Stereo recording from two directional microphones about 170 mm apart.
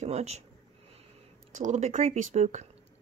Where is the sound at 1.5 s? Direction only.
45° right (ahead or behind).